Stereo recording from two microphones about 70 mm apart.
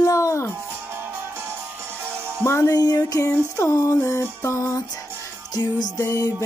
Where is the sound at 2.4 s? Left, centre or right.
Left.